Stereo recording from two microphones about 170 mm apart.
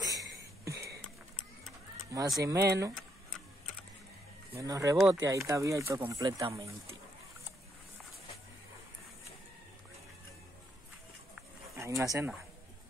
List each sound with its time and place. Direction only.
0.0 s a sound: 20° right (ahead or behind)
2.1 s speech: 20° right (ahead or behind)
4.6 s speech: 20° right (ahead or behind)
11.7 s speech: 15° right (ahead or behind)